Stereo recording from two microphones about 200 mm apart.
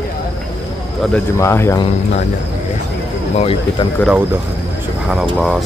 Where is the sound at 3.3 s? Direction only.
30° left (ahead or behind).